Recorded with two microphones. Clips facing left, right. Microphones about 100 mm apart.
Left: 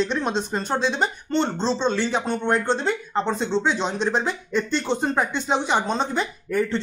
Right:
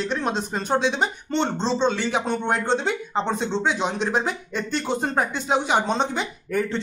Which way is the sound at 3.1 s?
15° right (ahead or behind).